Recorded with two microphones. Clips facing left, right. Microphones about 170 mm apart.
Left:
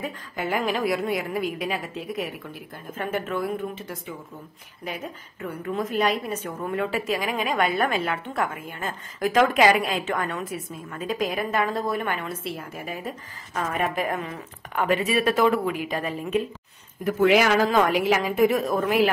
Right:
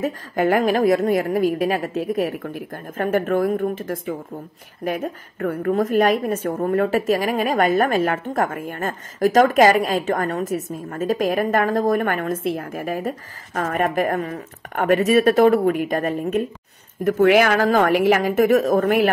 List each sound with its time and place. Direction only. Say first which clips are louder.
0.0 s a woman's voice: right 10 dB; 50° right (ahead or behind)